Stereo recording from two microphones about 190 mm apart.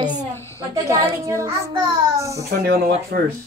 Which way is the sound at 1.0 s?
15° right (ahead or behind).